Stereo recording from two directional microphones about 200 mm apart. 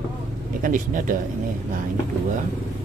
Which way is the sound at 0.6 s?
40° right (ahead or behind).